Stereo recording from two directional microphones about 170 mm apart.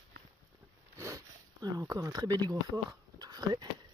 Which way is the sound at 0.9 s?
20° right (ahead or behind).